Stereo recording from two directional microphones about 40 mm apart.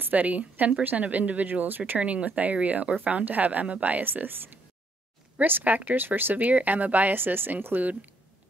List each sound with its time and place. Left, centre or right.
0.0 s a woman's voice: right
2.0 s speech: right
3.3 s speech: right
4.1 s speech: right
5.4 s speech: right
6.3 s speech: right
7.2 s speech: right